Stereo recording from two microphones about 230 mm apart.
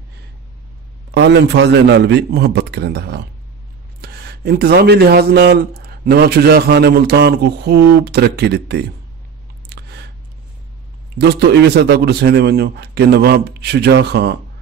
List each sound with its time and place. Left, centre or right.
1.1 s a man's voice: right
9.7 s a sound: right
11.1 s a man's voice: right